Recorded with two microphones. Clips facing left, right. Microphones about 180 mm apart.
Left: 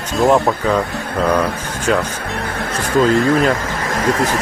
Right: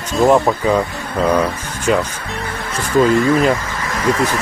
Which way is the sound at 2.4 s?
55° left (ahead or behind).